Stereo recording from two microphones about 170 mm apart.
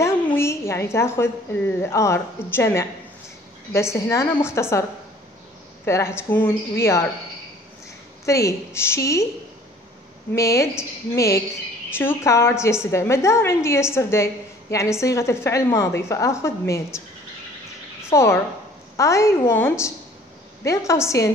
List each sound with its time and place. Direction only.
0.0 s a woman's voice: 15° left (ahead or behind)
5.9 s a woman's voice: 15° left (ahead or behind)
8.3 s a woman's voice: 20° left (ahead or behind)
10.3 s a woman's voice: 15° left (ahead or behind)
18.1 s a woman's voice: 15° left (ahead or behind)